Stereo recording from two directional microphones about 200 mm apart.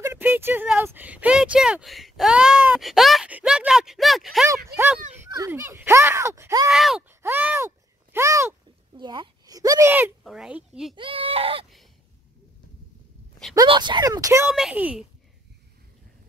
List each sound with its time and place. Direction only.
0.0 s speech: 10° right (ahead or behind)
6.7 s speech: centre (ahead or behind)
11.0 s speech: 25° right (ahead or behind)
13.6 s speech: 20° right (ahead or behind)
14.5 s speech: 5° right (ahead or behind)